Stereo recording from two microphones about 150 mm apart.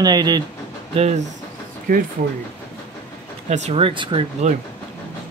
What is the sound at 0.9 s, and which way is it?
Speech, 45° right (ahead or behind).